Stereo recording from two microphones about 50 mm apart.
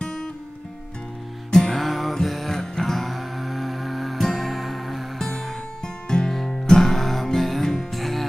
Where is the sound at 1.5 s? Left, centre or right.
Centre.